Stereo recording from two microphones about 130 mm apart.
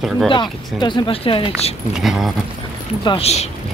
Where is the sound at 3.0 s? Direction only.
50° left (ahead or behind).